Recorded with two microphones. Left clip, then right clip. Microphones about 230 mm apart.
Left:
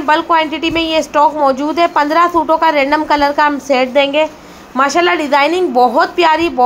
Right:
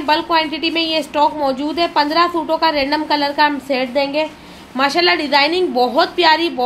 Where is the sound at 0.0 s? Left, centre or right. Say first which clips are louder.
Left 4 dB; centre.